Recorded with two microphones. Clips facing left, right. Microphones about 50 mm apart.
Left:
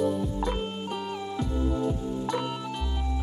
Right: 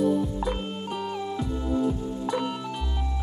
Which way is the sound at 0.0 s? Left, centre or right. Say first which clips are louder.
Right 3 dB; centre.